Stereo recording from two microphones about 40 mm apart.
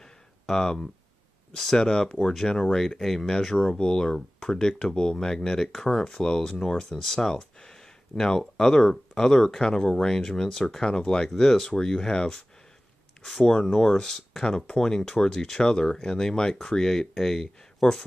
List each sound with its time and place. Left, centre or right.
0.0 s a sound: centre
1.5 s speech: centre
5.7 s speech: centre
5.9 s speech: centre